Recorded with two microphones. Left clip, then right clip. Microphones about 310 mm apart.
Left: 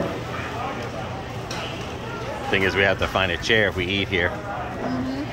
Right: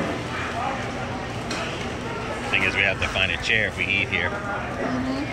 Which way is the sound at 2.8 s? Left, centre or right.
Centre.